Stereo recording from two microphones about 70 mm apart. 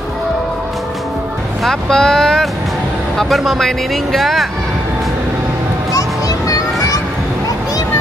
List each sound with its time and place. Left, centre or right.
1.6 s speech: centre
5.9 s music: left